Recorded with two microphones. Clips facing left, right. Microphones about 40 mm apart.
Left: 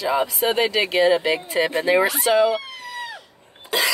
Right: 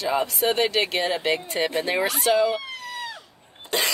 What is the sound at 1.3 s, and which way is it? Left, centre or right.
Speech, centre.